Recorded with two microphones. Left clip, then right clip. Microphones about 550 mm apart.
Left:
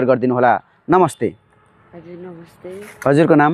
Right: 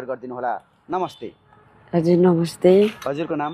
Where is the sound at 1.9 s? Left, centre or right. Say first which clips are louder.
Right 19 dB; right.